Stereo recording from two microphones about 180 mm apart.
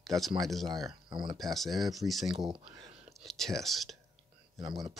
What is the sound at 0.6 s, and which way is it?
Speech, 20° right (ahead or behind).